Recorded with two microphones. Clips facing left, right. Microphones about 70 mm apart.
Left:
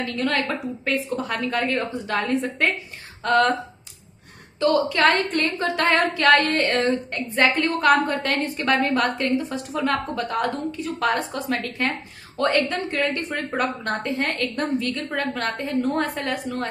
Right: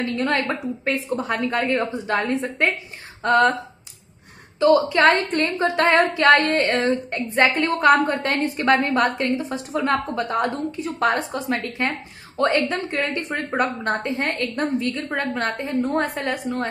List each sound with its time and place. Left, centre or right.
0.0 s a woman's voice: right
4.6 s a woman's voice: centre
7.4 s a woman's voice: centre
8.0 s a woman's voice: right